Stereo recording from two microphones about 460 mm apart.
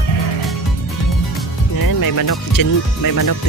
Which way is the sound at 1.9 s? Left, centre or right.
Left.